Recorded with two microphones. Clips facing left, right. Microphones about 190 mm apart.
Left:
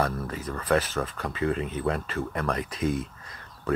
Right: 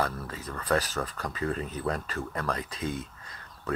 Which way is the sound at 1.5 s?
40° right (ahead or behind).